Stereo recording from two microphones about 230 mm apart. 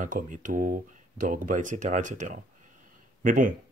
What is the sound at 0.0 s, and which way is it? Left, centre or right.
Speech, right.